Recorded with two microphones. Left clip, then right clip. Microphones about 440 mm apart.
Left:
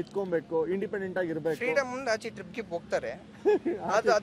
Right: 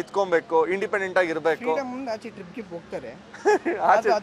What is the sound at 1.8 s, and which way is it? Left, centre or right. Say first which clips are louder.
Speech: left 1 dB; left.